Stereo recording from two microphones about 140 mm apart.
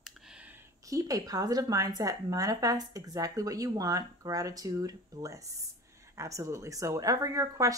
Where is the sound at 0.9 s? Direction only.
25° right (ahead or behind).